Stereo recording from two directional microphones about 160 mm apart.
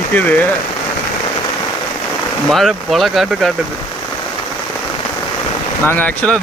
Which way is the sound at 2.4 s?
Centre (ahead or behind).